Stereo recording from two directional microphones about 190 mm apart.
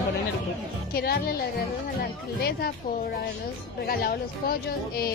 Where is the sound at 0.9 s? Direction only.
55° left (ahead or behind).